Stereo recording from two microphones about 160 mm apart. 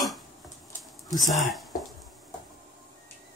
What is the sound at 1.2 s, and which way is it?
Speech, centre (ahead or behind).